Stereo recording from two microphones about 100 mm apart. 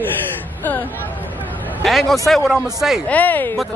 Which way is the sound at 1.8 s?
Centre (ahead or behind).